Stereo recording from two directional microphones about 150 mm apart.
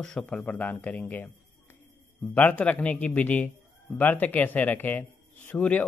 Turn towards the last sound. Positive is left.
turn(degrees=10)  # may be behind; listen again after turning